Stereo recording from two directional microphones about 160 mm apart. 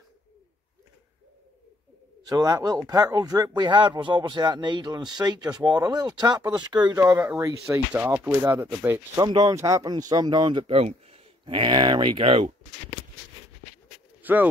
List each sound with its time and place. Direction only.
2.2 s speech: 25° right (ahead or behind)
14.2 s speech: 10° right (ahead or behind)